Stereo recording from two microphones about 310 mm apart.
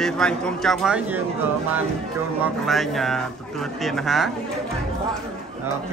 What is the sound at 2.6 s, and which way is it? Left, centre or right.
A man's voice, centre.